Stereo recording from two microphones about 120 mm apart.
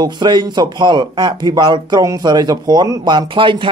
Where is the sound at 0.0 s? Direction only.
40° right (ahead or behind).